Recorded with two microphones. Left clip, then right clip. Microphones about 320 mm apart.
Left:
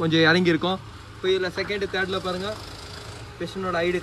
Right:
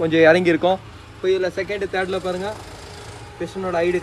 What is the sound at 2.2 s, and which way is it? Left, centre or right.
Speech, right.